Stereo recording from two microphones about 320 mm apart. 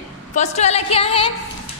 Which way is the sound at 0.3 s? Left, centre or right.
Left.